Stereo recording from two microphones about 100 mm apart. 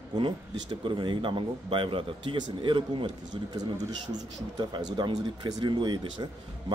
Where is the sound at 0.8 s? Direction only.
55° right (ahead or behind).